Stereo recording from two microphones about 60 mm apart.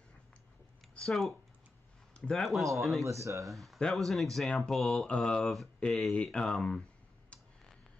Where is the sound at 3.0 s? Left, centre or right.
Right.